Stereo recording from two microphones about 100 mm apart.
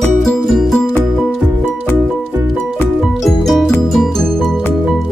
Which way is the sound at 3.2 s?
Centre (ahead or behind).